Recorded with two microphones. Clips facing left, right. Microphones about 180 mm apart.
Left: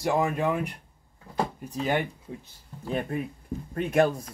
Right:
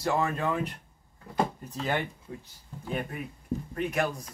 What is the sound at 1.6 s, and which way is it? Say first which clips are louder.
Speech: left 4 dB; 15° left (ahead or behind).